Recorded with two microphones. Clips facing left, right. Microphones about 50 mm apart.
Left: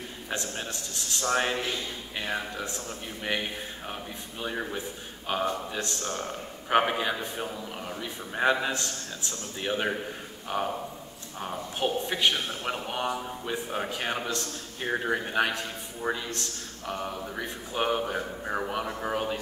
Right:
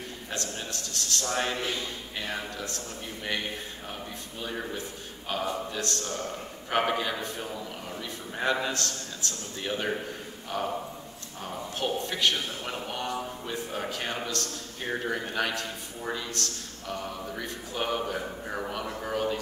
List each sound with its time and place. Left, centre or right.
0.3 s a man's voice: centre
4.4 s a man's voice: centre